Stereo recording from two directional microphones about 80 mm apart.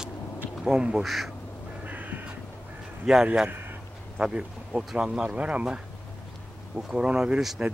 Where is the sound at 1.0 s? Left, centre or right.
Centre.